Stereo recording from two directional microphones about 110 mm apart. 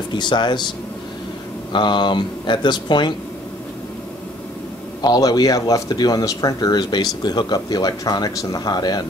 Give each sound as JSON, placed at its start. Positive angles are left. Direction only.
{"t": 0.1, "sound": "speech", "side_deg": 45}
{"t": 5.0, "sound": "speech", "side_deg": 40}